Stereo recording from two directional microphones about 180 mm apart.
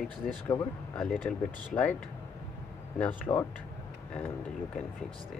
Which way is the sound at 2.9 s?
5° left (ahead or behind).